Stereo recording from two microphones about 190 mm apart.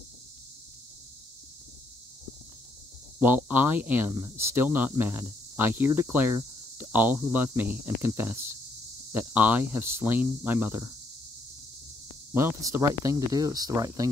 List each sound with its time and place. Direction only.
3.2 s speech: 10° right (ahead or behind)
12.4 s speech: 10° right (ahead or behind)